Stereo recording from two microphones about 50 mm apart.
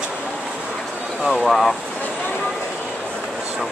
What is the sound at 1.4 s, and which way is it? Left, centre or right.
Speech, centre.